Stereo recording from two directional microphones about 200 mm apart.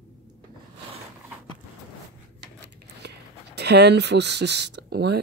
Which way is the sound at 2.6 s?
55° right (ahead or behind).